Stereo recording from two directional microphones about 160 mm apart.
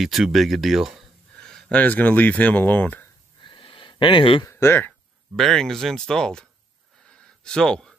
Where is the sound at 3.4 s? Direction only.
30° left (ahead or behind).